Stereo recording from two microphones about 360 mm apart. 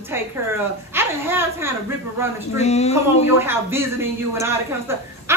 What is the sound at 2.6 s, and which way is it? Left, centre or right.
Speech, centre.